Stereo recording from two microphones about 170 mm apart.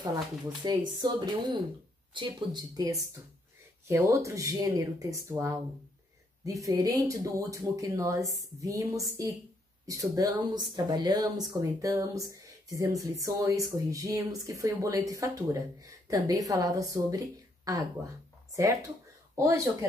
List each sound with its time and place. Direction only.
0.7 s speech: 25° right (ahead or behind)
10.1 s speech: 25° right (ahead or behind)